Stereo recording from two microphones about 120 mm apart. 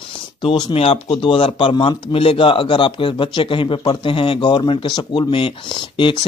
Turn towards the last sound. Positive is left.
turn(degrees=45)  # may be behind; listen again after turning